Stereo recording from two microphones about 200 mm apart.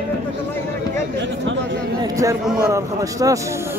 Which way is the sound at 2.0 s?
15° right (ahead or behind).